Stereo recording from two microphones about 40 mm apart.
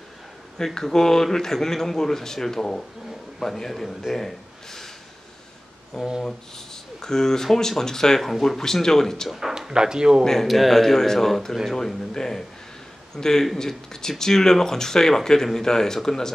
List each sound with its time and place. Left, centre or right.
0.7 s speech: centre
6.2 s speech: centre
8.2 s speech: centre
8.5 s speech: centre
9.5 s speech: centre
10.4 s speech: centre
11.8 s speech: centre